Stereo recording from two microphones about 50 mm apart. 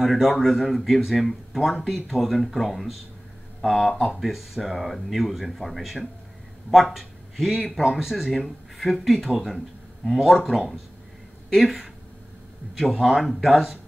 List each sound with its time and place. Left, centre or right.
0.0 s speech: centre